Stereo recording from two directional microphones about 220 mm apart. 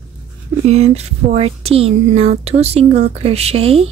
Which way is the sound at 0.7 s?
30° right (ahead or behind).